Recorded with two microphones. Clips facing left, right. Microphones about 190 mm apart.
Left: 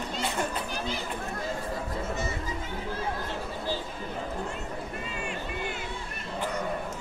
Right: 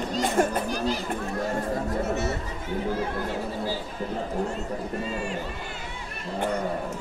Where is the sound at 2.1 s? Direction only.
70° right (ahead or behind).